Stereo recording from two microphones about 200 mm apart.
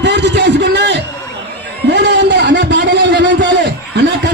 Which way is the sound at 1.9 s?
60° right (ahead or behind).